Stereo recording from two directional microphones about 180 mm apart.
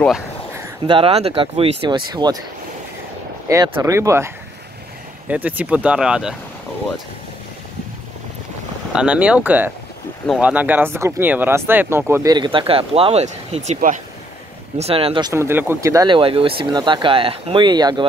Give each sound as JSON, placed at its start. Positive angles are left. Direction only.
{"t": 0.8, "sound": "speech", "side_deg": -30}
{"t": 3.4, "sound": "speech", "side_deg": -15}
{"t": 5.3, "sound": "speech", "side_deg": -10}
{"t": 8.9, "sound": "speech", "side_deg": -5}
{"t": 14.8, "sound": "speech", "side_deg": -30}